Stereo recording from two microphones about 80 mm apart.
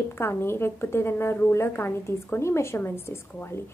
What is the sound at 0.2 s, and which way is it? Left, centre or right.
A woman's voice, left.